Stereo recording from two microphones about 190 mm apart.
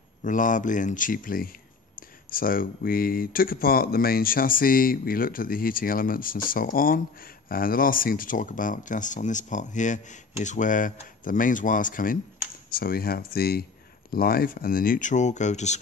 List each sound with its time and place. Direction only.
0.2 s speech: 45° left (ahead or behind)